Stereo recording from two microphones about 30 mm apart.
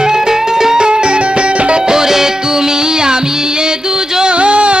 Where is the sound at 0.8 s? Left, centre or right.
Right.